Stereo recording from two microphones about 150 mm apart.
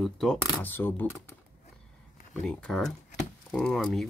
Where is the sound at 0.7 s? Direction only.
15° left (ahead or behind).